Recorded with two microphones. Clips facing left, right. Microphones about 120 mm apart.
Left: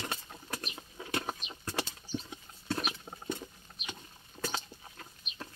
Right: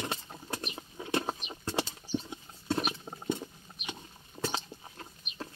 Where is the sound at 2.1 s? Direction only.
20° right (ahead or behind).